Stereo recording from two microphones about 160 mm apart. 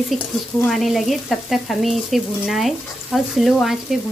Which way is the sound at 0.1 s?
Centre (ahead or behind).